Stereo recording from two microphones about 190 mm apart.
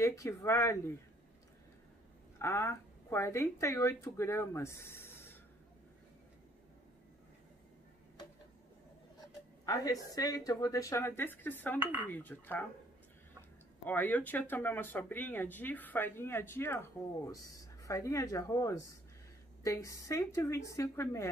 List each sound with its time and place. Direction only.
0.0 s speech: 15° left (ahead or behind)
2.3 s speech: 15° left (ahead or behind)
9.2 s speech: 20° left (ahead or behind)
11.8 s dishes: 10° right (ahead or behind)
12.1 s speech: 10° left (ahead or behind)
13.8 s speech: 10° left (ahead or behind)